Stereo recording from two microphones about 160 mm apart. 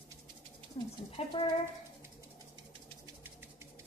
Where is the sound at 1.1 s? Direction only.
35° left (ahead or behind).